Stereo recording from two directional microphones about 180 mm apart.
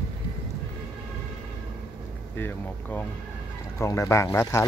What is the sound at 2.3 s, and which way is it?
Speech, 10° left (ahead or behind).